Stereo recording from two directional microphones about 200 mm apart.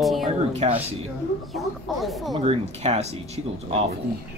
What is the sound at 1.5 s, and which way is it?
Speech, centre (ahead or behind).